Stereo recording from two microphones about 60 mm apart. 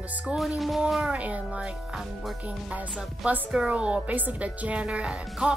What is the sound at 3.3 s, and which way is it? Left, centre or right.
A woman's voice, right.